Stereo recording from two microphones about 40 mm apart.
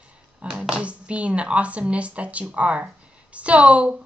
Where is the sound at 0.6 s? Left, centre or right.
Right.